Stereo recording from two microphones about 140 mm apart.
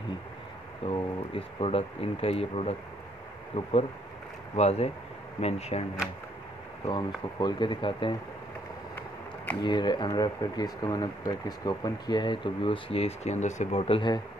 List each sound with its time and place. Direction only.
0.8 s speech: 40° left (ahead or behind)
6.9 s speech: 30° left (ahead or behind)
9.6 s speech: 30° left (ahead or behind)